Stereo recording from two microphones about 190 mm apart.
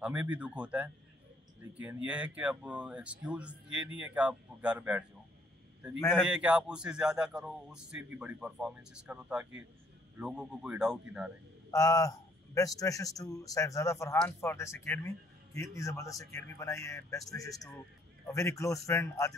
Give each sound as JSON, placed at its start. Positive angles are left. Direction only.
{"t": 0.0, "sound": "speech", "side_deg": -5}
{"t": 6.1, "sound": "a man's voice", "side_deg": -5}
{"t": 11.7, "sound": "speech", "side_deg": 15}